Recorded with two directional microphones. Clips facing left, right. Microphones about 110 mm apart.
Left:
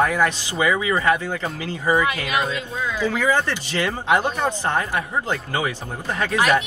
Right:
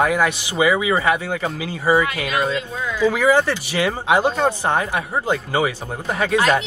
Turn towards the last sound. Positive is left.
turn(degrees=-20)  # may be behind; listen again after turning